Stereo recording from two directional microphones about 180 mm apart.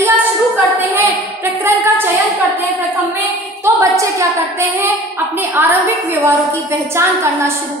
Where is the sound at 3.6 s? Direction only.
15° right (ahead or behind).